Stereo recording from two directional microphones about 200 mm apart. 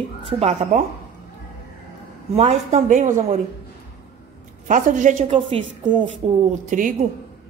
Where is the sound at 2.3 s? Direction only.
30° right (ahead or behind).